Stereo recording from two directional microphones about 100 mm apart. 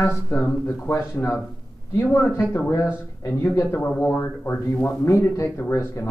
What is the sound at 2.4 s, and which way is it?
Speech, 25° left (ahead or behind).